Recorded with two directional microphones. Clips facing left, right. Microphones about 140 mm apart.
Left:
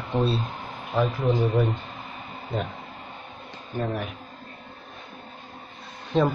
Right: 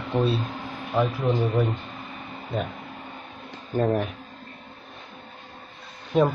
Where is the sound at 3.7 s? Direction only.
45° right (ahead or behind).